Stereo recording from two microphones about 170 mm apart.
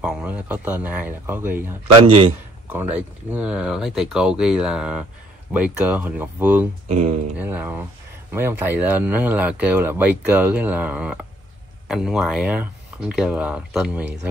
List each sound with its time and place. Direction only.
0.0 s speech: 5° right (ahead or behind)
2.0 s a man's voice: 35° right (ahead or behind)
3.0 s speech: 10° right (ahead or behind)
6.9 s speech: 45° right (ahead or behind)
7.3 s speech: 10° right (ahead or behind)